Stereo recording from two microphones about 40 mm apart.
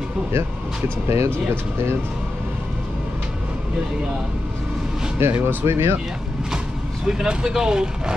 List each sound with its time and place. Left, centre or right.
1.0 s speech: right
5.2 s speech: right
7.1 s speech: centre